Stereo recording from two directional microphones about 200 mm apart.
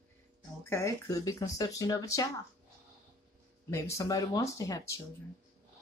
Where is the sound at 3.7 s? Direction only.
15° left (ahead or behind).